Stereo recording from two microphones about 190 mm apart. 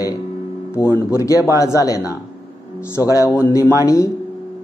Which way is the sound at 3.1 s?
15° left (ahead or behind).